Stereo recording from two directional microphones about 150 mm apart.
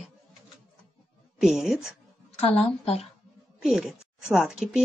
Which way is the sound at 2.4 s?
40° left (ahead or behind).